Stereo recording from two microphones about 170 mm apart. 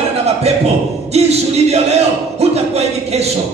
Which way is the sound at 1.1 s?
40° right (ahead or behind).